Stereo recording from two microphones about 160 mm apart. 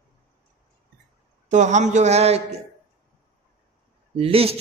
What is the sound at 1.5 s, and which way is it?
Speech, 50° right (ahead or behind).